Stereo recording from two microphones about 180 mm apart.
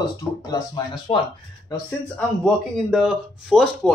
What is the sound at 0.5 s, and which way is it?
Speech, 25° left (ahead or behind).